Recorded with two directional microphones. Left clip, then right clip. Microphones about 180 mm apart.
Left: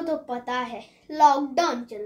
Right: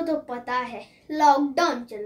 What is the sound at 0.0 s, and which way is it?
Speech, centre (ahead or behind).